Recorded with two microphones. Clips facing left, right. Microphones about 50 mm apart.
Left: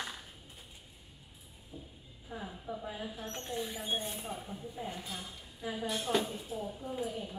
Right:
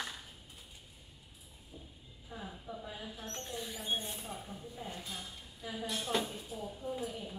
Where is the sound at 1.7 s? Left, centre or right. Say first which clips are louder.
Left 4 dB; centre.